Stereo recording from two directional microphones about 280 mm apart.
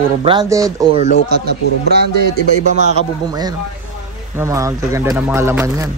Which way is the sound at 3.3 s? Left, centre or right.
Centre.